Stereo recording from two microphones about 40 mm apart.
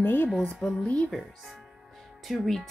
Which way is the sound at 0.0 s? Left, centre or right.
Left.